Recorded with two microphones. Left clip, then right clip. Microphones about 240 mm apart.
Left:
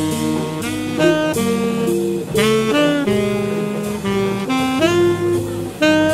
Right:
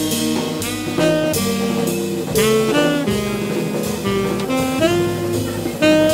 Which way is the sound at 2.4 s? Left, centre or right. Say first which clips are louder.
Even; centre.